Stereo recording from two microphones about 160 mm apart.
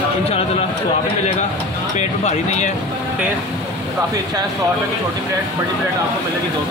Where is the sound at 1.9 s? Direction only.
45° left (ahead or behind).